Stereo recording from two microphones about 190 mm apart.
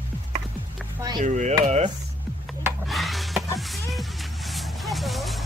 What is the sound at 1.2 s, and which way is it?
Speech, 40° right (ahead or behind).